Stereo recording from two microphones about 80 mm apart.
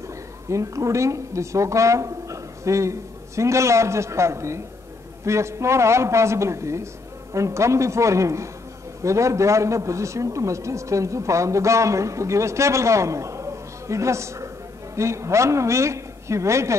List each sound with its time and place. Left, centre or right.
0.5 s a man's voice: right